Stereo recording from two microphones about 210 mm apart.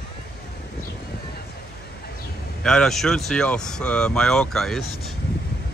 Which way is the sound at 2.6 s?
5° left (ahead or behind).